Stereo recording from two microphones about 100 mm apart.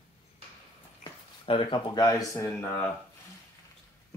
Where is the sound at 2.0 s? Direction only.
40° left (ahead or behind).